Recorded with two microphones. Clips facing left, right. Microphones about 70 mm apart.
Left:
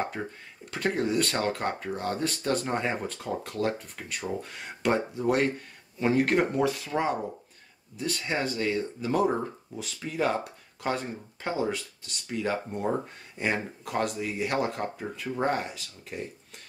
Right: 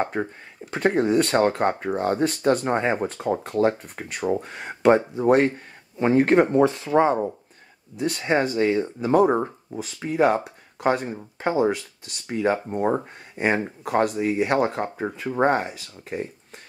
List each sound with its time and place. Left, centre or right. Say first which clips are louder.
0.0 s speech: right 7 dB; right